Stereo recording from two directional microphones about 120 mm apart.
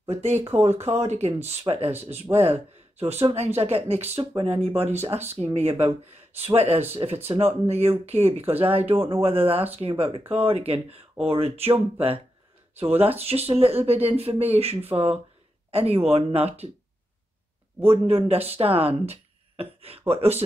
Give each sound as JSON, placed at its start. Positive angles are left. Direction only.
{"t": 0.1, "sound": "speech", "side_deg": -65}
{"t": 1.9, "sound": "speech", "side_deg": -20}
{"t": 2.3, "sound": "speech", "side_deg": -60}
{"t": 4.9, "sound": "speech", "side_deg": -20}
{"t": 5.2, "sound": "speech", "side_deg": -60}
{"t": 12.7, "sound": "speech", "side_deg": -55}
{"t": 17.8, "sound": "speech", "side_deg": -55}